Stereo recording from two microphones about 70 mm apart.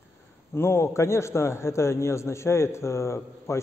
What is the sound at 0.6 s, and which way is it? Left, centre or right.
A man's voice, left.